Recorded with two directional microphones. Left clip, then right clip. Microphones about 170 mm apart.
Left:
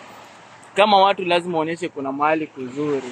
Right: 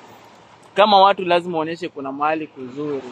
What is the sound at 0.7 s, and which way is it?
Speech, 10° right (ahead or behind).